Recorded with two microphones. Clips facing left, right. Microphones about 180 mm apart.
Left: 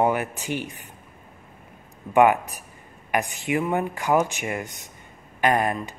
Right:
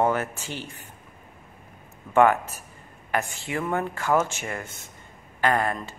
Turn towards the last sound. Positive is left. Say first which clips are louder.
# left 2 dB
turn(degrees=15)  # may be behind; listen again after turning